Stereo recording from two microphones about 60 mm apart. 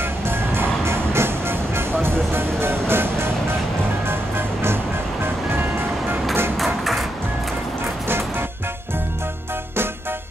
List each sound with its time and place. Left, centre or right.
0.0 s music: right
6.6 s music: centre